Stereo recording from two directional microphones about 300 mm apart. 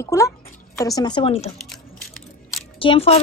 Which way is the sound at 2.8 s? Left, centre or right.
Centre.